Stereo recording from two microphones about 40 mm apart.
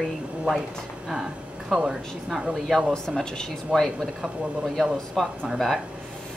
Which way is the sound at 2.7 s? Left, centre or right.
Centre.